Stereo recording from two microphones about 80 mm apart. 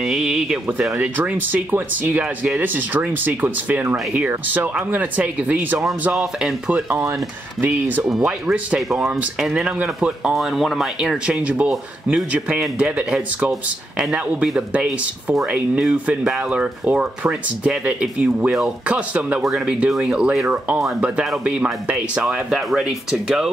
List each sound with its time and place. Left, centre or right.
0.0 s speech: centre
0.9 s speech: right
8.5 s speech: centre
19.4 s speech: centre